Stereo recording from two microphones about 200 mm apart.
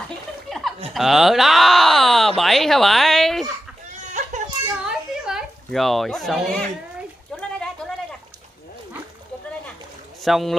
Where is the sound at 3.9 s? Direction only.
35° right (ahead or behind).